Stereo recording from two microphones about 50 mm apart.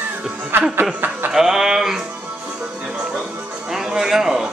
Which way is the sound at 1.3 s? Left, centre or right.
Centre.